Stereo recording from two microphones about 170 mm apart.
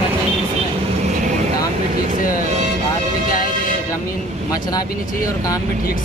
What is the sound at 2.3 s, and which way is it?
Vehicle, 45° right (ahead or behind).